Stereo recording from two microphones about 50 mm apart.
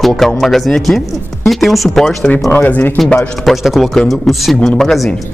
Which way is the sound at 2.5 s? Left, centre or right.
Left.